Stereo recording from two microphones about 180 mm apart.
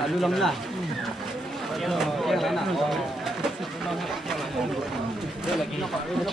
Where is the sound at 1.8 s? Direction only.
Centre (ahead or behind).